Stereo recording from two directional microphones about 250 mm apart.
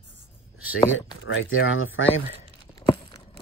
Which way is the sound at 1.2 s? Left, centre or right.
Left.